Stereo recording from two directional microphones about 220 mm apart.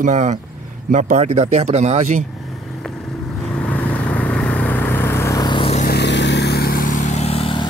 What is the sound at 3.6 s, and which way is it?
Vehicle, 5° left (ahead or behind).